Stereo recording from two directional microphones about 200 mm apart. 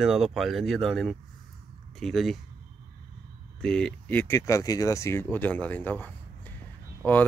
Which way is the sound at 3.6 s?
5° left (ahead or behind).